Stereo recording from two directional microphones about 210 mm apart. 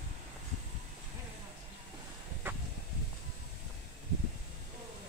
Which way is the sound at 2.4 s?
10° right (ahead or behind).